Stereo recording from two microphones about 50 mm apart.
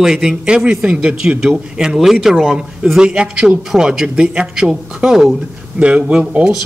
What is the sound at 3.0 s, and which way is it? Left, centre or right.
Speech, centre.